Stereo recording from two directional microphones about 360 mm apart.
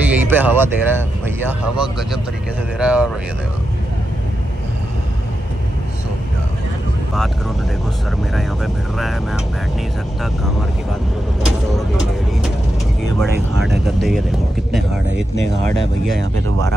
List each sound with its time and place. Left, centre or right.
0.1 s speech: centre
8.9 s speech: centre
11.4 s vehicle: centre
13.2 s speech: centre